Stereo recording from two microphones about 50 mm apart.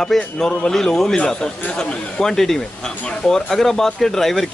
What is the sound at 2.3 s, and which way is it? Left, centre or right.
A man's voice, centre.